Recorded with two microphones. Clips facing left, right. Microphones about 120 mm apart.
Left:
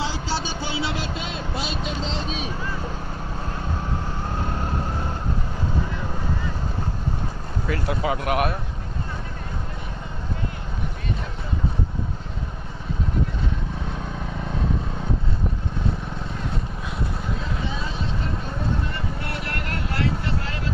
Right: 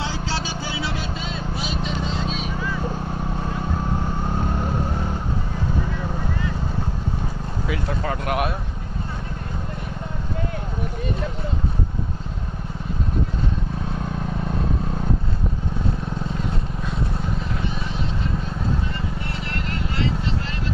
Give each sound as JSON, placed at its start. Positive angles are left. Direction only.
{"t": 7.6, "sound": "vehicle", "side_deg": -5}
{"t": 7.9, "sound": "speech", "side_deg": 5}
{"t": 19.5, "sound": "vehicle", "side_deg": 70}